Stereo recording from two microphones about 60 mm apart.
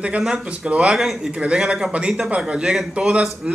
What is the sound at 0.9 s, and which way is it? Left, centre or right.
Speech, centre.